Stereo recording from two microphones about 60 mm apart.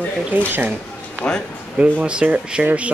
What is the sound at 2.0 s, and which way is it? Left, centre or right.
Speech, centre.